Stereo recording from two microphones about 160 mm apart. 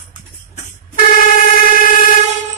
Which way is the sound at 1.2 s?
60° left (ahead or behind).